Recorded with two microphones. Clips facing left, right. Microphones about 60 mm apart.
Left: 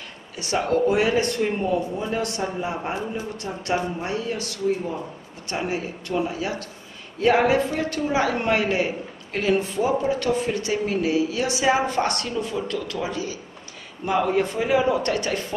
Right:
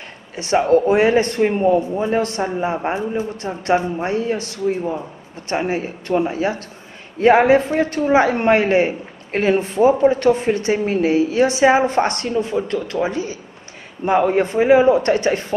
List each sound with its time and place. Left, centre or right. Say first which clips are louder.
0.4 s a man's voice: right 7 dB; right